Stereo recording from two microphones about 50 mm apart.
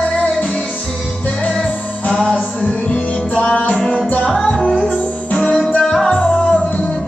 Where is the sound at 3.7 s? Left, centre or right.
Centre.